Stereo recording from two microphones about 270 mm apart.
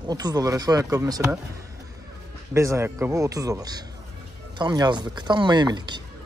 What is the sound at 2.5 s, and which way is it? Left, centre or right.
Speech, centre.